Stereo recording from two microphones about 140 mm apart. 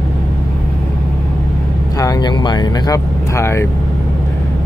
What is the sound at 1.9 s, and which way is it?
Vehicle, 25° left (ahead or behind).